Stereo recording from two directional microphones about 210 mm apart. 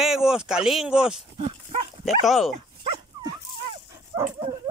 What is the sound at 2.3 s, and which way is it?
Speech, centre (ahead or behind).